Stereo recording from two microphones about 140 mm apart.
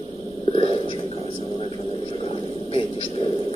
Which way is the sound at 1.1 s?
45° right (ahead or behind).